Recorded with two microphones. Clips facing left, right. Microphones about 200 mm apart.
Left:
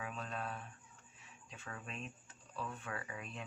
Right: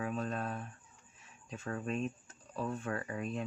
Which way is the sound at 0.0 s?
45° right (ahead or behind).